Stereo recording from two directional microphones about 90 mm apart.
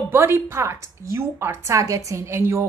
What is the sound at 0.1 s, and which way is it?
A woman's voice, 25° right (ahead or behind).